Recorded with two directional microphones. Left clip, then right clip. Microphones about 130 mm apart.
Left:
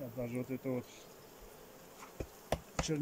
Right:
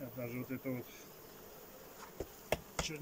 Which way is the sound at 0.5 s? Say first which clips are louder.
Left 2 dB; 30° left (ahead or behind).